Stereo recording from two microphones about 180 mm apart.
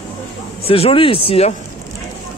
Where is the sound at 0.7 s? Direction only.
30° left (ahead or behind).